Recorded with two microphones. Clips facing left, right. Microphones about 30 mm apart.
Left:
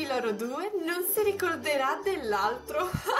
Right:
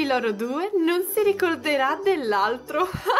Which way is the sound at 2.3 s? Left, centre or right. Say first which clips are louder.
Right 6 dB; right.